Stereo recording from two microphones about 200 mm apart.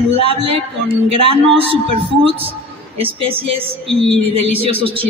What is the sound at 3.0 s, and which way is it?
Female singing, 30° right (ahead or behind).